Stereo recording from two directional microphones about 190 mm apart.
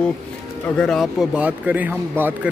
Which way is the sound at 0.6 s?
5° left (ahead or behind).